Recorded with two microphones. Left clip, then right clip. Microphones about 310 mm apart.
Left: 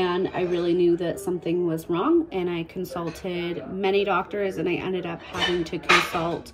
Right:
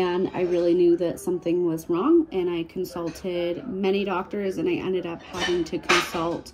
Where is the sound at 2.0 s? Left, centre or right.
Centre.